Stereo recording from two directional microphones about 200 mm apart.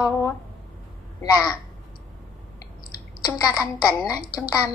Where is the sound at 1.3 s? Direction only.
15° left (ahead or behind).